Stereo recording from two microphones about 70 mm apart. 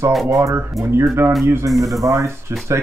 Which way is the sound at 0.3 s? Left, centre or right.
Right.